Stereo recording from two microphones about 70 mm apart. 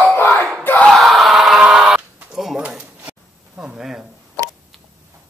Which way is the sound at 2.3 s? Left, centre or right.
Centre.